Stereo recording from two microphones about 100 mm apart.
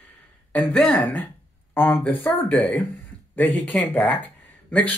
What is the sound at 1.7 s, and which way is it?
Speech, 20° left (ahead or behind).